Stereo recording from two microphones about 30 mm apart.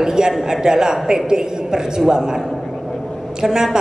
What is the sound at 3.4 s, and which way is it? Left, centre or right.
Speech, centre.